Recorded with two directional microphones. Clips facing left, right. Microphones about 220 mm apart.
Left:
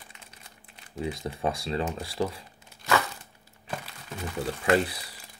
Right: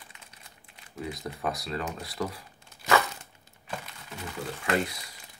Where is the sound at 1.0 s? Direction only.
25° left (ahead or behind).